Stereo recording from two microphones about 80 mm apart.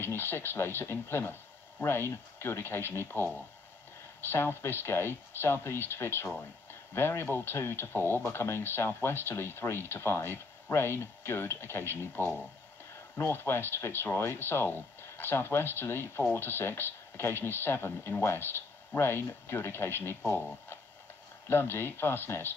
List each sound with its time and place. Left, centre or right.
0.0 s speech: left
4.3 s speech: left
13.1 s speech: left
21.5 s speech: left